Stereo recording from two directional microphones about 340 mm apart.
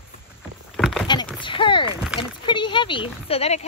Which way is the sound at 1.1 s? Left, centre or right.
Centre.